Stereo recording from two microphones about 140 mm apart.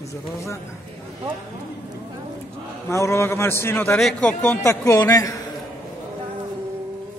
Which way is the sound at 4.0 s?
5° left (ahead or behind).